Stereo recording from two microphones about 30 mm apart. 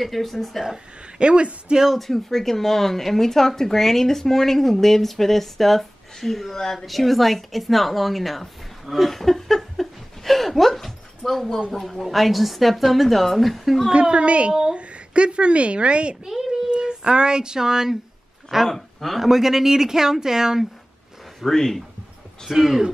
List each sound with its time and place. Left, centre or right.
0.0 s a woman's voice: centre
1.2 s a woman's voice: right
2.0 s speech: centre
6.5 s speech: centre
6.9 s a woman's voice: centre
13.9 s a woman's voice: right
14.5 s speech: right
14.8 s a woman's voice: right
16.3 s speech: centre
16.7 s speech: right
18.7 s speech: centre
19.2 s speech: centre
21.5 s speech: centre
22.6 s speech: centre